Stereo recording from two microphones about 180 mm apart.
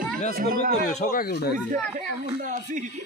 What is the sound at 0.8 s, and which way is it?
Speech, 55° left (ahead or behind).